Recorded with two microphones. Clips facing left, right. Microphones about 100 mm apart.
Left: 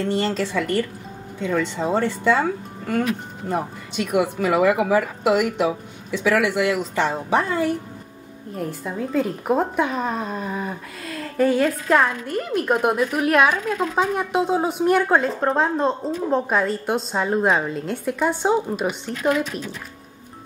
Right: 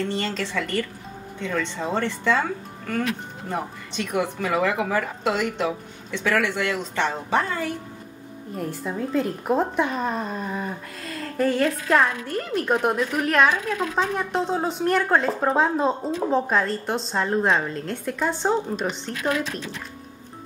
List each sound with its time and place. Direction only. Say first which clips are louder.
0.1 s speech: left 5 dB; 15° left (ahead or behind)
8.5 s speech: left 1 dB; centre (ahead or behind)